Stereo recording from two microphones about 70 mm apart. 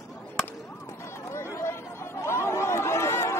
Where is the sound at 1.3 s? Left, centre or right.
Left.